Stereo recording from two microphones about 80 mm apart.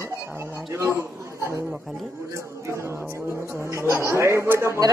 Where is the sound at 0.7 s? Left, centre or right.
Right.